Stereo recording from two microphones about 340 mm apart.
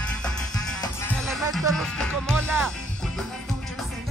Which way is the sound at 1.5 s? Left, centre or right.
Centre.